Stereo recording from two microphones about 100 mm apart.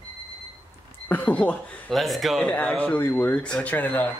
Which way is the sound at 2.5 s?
15° left (ahead or behind).